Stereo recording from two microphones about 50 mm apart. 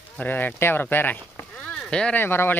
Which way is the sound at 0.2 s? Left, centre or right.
Left.